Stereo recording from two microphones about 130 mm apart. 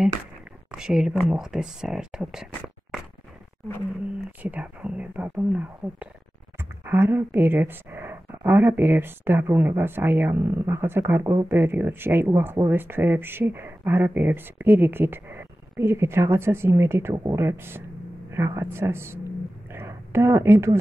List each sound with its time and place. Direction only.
0.7 s speech: 5° right (ahead or behind)
4.4 s speech: 10° right (ahead or behind)
19.7 s a sound: 20° right (ahead or behind)